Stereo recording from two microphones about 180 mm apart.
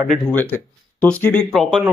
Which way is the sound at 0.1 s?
10° left (ahead or behind).